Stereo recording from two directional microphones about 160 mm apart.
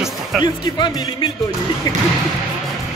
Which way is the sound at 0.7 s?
30° left (ahead or behind).